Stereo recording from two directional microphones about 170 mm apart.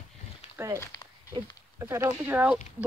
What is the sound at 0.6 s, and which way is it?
Speech, 15° right (ahead or behind).